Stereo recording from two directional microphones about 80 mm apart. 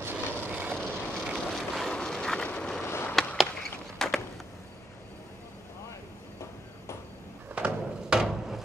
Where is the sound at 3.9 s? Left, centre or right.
Centre.